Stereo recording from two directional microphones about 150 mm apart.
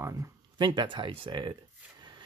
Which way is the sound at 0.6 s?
30° right (ahead or behind).